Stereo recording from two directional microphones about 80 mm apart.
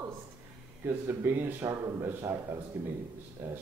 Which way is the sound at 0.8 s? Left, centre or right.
Right.